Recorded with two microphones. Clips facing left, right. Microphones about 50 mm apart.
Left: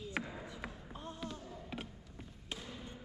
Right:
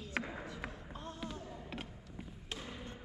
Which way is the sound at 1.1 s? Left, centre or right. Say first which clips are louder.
Right 1 dB; centre.